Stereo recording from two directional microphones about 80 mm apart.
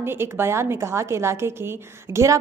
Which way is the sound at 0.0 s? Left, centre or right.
Right.